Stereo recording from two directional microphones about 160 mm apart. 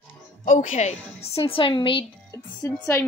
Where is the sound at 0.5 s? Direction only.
55° left (ahead or behind); by 2.0 s 35° left (ahead or behind).